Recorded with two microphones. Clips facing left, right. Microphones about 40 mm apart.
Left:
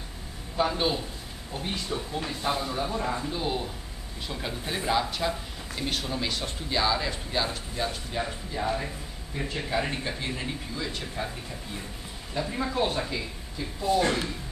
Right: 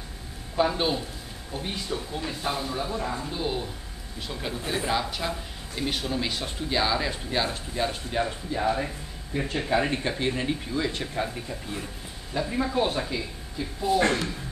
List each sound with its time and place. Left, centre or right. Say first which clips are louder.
0.6 s speech: right 2 dB; centre
12.4 s speech: right 2 dB; centre